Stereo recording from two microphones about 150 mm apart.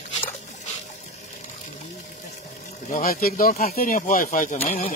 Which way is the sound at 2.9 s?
65° left (ahead or behind).